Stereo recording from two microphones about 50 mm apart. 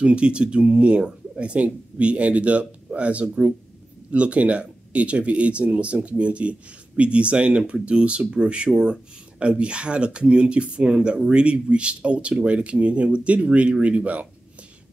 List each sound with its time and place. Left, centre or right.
0.0 s speech: right